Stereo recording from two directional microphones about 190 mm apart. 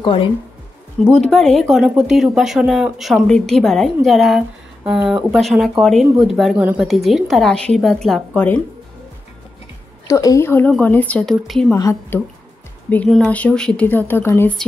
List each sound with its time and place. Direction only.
0.0 s speech: 25° left (ahead or behind)
1.0 s speech: 5° left (ahead or behind)
10.0 s a woman's voice: 15° left (ahead or behind)
11.7 s a woman's voice: 15° left (ahead or behind)